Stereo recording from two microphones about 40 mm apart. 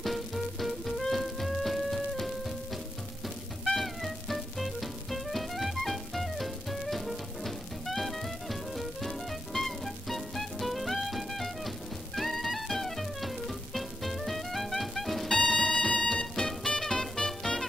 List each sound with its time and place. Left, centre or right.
0.0 s music: centre
3.6 s music: centre
15.2 s music: centre
17.5 s music: left